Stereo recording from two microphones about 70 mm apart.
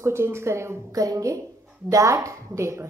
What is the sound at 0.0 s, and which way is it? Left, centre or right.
Speech, right.